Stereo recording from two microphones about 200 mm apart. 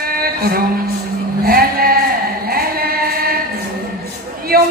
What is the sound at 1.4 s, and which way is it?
Sheep, 50° right (ahead or behind).